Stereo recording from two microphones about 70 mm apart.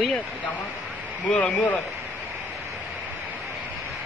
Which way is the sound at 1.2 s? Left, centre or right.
Left.